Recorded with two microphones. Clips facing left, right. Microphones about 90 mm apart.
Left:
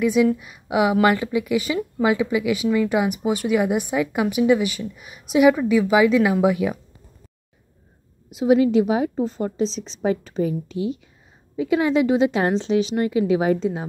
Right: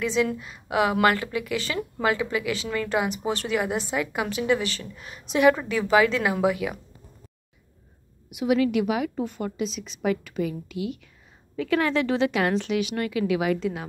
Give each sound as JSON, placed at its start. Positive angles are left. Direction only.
{"t": 0.0, "sound": "a woman's voice", "side_deg": 15}
{"t": 8.4, "sound": "a woman's voice", "side_deg": 25}
{"t": 11.5, "sound": "a woman's voice", "side_deg": 20}